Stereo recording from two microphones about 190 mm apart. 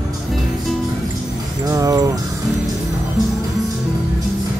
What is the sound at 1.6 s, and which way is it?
Speech, 15° right (ahead or behind).